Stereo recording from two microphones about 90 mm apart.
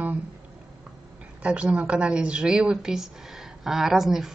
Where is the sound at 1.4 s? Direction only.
15° right (ahead or behind).